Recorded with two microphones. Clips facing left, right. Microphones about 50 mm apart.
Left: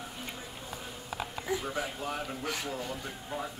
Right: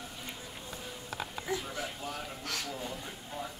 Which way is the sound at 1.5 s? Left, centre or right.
Centre.